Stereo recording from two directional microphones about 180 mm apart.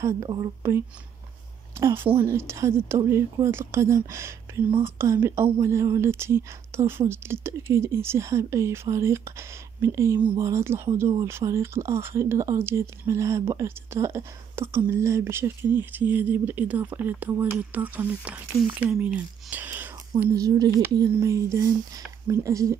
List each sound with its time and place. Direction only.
0.0 s speech: 20° right (ahead or behind)